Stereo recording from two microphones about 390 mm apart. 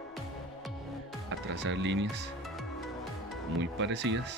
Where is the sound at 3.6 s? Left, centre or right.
Right.